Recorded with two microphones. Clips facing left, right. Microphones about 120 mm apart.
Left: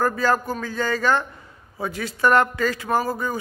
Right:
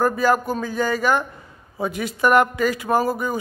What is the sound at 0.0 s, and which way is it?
A woman's voice, 15° right (ahead or behind).